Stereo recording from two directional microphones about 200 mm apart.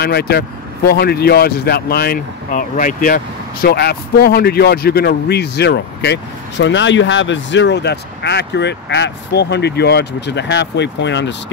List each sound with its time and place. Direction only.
0.0 s speech: 55° left (ahead or behind)
3.6 s speech: 50° left (ahead or behind)